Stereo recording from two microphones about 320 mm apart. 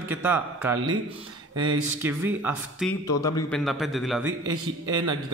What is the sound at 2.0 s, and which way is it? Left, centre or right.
Speech, centre.